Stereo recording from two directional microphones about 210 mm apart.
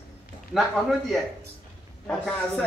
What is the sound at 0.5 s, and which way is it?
Speech, centre (ahead or behind).